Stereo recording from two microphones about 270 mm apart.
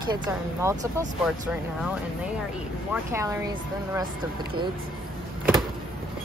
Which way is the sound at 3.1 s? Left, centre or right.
Centre.